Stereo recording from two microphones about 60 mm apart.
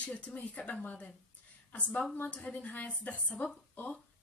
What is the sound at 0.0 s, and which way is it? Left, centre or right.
A woman's voice, left.